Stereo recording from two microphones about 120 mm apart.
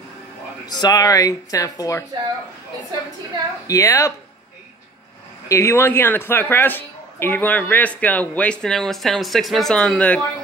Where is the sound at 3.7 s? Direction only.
25° left (ahead or behind).